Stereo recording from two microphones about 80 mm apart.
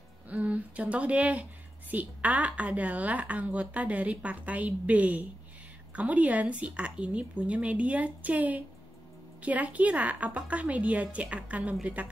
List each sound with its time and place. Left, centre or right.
0.3 s a woman's voice: centre